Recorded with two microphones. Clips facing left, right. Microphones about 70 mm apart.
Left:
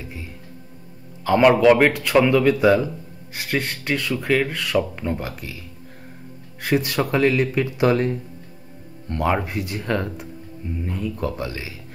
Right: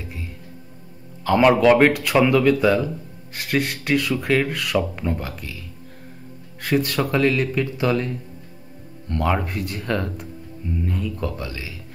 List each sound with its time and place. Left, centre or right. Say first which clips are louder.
1.2 s a man's voice: left 1 dB; centre
2.4 s speech: left 1 dB; centre
3.3 s speech: right 2 dB; centre
6.6 s speech: even; centre
9.1 s speech: left 1 dB; centre